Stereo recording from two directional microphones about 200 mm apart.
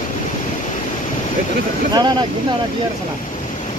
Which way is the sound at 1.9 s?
20° right (ahead or behind).